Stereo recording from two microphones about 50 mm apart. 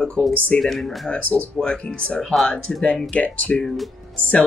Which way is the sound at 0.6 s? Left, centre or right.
Centre.